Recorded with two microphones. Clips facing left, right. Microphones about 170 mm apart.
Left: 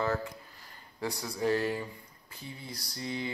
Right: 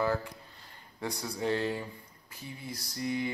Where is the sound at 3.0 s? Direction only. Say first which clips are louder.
Right 4 dB; 25° left (ahead or behind).